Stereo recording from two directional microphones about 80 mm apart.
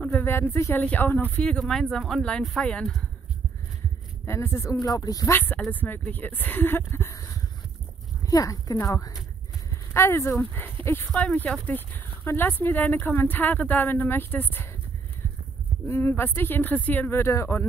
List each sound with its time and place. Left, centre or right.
0.0 s speech: left
4.3 s speech: left
4.8 s speech: left
5.3 s speech: left
7.2 s a sound: left
8.3 s speech: left
9.9 s speech: left
11.1 s speech: centre
15.9 s speech: left